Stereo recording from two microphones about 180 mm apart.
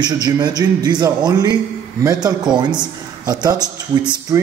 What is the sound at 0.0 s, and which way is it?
A man's voice, 25° right (ahead or behind).